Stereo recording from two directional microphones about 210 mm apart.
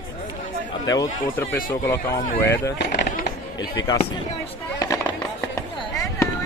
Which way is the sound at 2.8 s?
55° left (ahead or behind).